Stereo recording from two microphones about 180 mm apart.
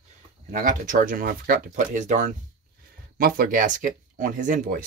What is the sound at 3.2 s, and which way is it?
Speech, 55° right (ahead or behind).